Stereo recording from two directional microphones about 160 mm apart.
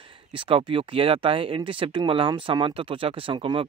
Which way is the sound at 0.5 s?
35° right (ahead or behind).